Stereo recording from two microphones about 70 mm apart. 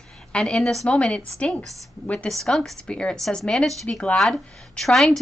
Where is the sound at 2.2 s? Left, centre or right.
Centre.